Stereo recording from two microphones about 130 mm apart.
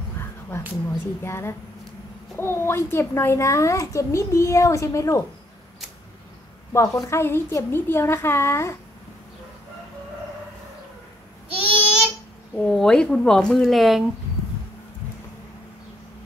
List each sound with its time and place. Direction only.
0.8 s a child's voice: 20° left (ahead or behind)
6.7 s a child's voice: 25° left (ahead or behind)
12.5 s speech: 5° left (ahead or behind)